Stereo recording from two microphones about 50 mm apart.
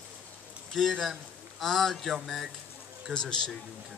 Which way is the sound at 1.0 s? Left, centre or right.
Centre.